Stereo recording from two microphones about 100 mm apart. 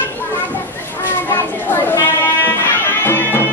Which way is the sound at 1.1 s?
20° left (ahead or behind).